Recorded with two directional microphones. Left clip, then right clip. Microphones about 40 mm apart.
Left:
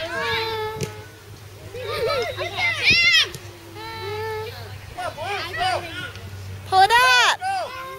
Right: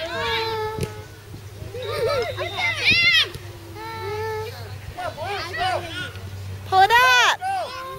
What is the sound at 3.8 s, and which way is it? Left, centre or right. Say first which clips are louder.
Child singing: right 1 dB; right.